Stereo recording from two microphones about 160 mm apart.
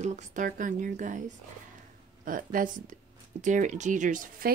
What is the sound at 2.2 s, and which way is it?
Speech, 60° right (ahead or behind).